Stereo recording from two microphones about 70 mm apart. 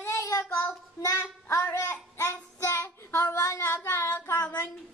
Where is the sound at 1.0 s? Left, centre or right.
Left.